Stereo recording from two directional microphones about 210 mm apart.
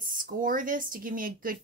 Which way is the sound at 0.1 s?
40° right (ahead or behind).